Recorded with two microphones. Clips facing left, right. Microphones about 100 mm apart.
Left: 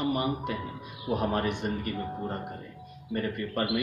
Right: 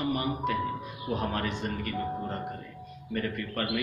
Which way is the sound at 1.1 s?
15° left (ahead or behind).